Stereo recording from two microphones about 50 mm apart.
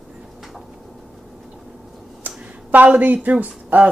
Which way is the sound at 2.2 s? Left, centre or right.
Right.